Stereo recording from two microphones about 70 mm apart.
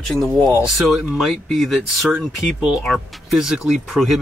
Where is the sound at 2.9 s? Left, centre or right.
Centre.